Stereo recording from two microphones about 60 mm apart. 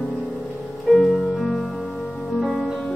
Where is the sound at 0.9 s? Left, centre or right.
Centre.